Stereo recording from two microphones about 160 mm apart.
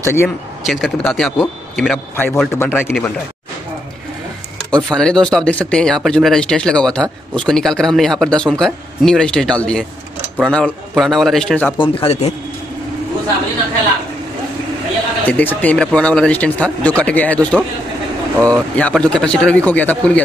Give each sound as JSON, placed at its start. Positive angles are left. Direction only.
{"t": 0.0, "sound": "speech", "side_deg": 15}
{"t": 0.7, "sound": "speech", "side_deg": 0}
{"t": 4.6, "sound": "speech", "side_deg": 5}
{"t": 11.8, "sound": "speech", "side_deg": 35}
{"t": 15.2, "sound": "speech", "side_deg": 10}